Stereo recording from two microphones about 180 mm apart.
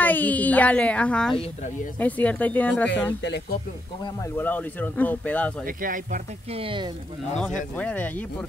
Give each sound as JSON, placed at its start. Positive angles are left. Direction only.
{"t": 0.0, "sound": "speech", "side_deg": 10}
{"t": 4.4, "sound": "speech", "side_deg": 10}
{"t": 5.8, "sound": "speech", "side_deg": -50}
{"t": 6.5, "sound": "speech", "side_deg": -30}
{"t": 7.7, "sound": "speech", "side_deg": 10}